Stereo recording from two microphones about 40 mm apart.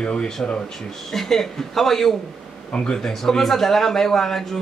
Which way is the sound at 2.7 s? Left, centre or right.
Centre.